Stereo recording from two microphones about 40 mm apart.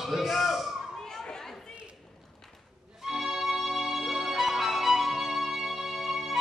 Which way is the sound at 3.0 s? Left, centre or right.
Centre.